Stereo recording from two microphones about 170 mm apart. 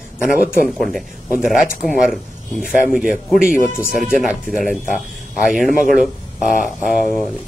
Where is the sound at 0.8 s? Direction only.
Centre (ahead or behind).